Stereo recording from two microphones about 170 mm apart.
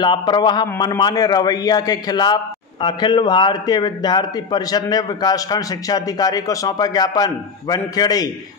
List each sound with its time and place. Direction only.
0.0 s a man's voice: 25° left (ahead or behind)